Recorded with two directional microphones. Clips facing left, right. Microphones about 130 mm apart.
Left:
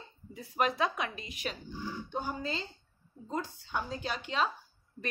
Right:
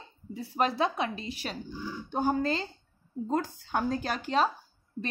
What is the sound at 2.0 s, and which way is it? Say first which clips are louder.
Speech: right 11 dB; 45° right (ahead or behind).